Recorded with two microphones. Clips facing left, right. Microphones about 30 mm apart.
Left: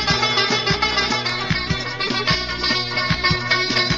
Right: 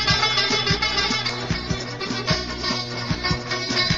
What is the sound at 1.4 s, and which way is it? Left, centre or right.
Music, left.